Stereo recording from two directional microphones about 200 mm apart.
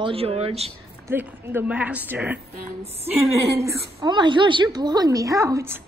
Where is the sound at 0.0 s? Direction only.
30° right (ahead or behind).